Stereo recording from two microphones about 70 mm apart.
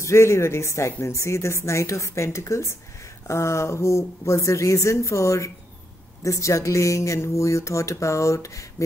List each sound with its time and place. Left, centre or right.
0.0 s speech: left